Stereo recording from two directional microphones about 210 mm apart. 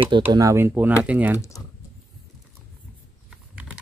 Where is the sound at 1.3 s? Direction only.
15° left (ahead or behind).